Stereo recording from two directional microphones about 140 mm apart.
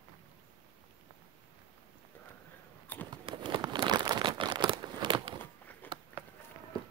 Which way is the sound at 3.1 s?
35° right (ahead or behind).